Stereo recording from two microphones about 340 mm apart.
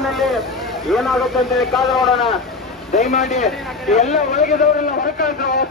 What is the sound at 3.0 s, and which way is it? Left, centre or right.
Speech, centre.